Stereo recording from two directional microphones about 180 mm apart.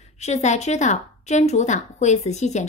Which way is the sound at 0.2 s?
40° left (ahead or behind).